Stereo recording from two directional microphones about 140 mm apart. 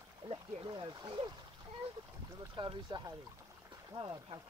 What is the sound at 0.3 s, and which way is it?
Speech, 35° right (ahead or behind).